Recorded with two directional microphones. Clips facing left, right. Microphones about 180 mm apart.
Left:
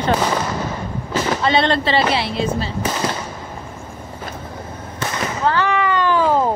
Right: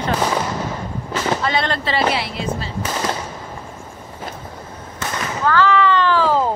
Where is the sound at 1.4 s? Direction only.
25° left (ahead or behind).